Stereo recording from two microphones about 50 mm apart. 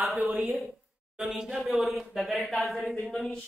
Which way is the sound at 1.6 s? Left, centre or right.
Centre.